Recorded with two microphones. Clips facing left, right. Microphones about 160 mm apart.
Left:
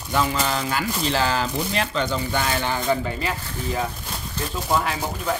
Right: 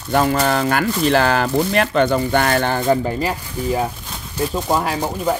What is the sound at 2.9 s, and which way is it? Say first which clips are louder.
Speech: right 6 dB; 35° right (ahead or behind).